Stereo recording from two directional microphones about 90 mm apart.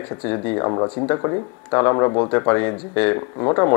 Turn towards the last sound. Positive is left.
turn(degrees=30)  # may be behind; listen again after turning